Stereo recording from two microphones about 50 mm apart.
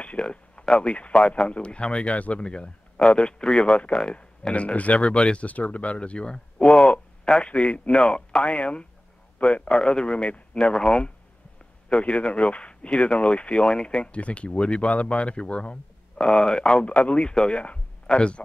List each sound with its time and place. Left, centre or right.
0.0 s speech: left
6.6 s a sound: centre
7.4 s speech: left
8.0 s a man's voice: centre